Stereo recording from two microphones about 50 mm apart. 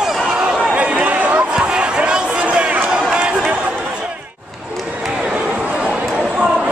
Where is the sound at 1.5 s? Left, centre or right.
Centre.